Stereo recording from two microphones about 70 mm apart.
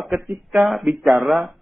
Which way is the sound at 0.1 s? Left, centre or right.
Centre.